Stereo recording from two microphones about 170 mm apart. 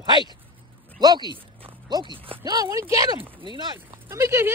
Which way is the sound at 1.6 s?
25° right (ahead or behind).